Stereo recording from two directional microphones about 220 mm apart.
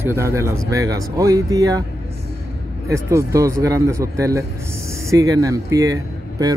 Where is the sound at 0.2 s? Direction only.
10° right (ahead or behind).